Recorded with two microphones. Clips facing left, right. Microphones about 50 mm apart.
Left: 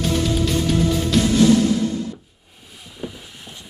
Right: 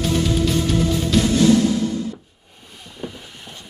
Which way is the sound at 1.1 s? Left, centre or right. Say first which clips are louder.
Right 1 dB; centre.